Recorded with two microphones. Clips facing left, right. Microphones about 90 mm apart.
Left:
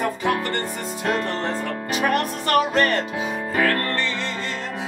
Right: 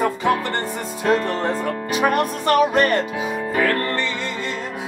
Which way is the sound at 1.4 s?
15° right (ahead or behind).